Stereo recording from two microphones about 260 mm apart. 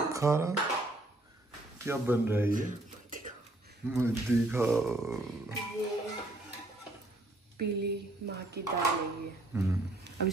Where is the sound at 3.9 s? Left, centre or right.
Centre.